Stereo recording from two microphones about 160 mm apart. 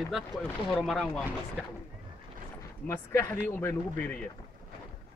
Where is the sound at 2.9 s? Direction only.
15° left (ahead or behind).